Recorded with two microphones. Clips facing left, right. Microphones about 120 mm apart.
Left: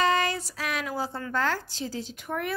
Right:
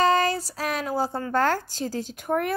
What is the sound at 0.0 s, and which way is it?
A woman's voice, 35° right (ahead or behind).